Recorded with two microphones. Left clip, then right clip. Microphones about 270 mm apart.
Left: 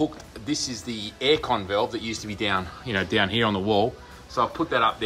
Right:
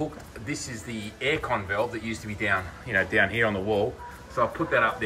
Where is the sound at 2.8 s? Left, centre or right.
Centre.